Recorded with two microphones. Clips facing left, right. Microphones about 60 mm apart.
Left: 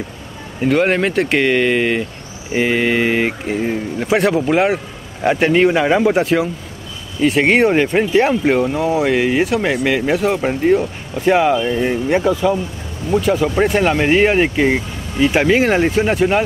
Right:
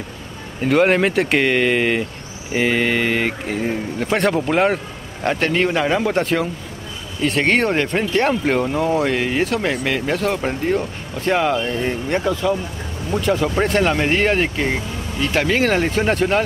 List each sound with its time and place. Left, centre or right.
0.7 s speech: centre